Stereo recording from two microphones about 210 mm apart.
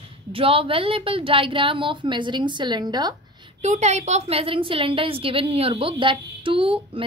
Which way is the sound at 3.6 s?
35° right (ahead or behind).